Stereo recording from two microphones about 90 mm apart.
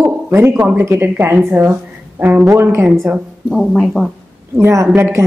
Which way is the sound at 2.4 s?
30° right (ahead or behind).